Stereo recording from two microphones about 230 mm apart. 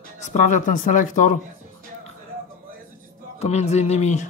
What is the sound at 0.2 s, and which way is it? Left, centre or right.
Speech, left.